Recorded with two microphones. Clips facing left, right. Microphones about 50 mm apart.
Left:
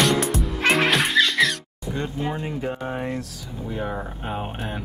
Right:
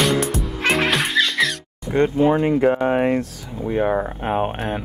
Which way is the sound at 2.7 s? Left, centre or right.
Right.